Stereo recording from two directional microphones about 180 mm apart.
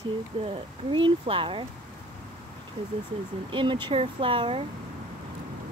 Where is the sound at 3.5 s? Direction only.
25° right (ahead or behind).